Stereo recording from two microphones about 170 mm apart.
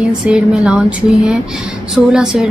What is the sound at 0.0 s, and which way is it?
A woman's voice, 5° right (ahead or behind).